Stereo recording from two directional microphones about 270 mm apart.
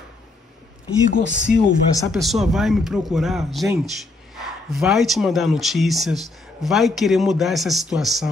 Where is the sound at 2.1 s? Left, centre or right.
Centre.